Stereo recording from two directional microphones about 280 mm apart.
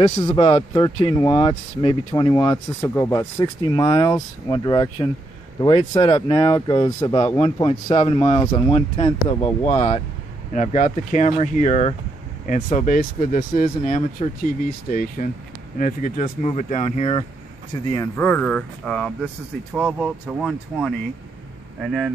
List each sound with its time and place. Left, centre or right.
0.3 s speech: left
17.9 s speech: centre